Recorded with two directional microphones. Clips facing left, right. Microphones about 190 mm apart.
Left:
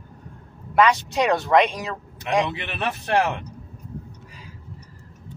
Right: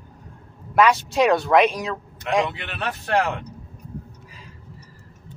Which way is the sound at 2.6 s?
20° left (ahead or behind).